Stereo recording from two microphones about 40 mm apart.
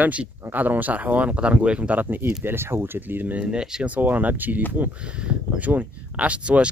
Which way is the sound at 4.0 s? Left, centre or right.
Right.